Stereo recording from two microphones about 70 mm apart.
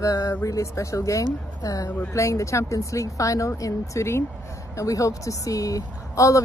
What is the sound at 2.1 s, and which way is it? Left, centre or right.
Speech, left.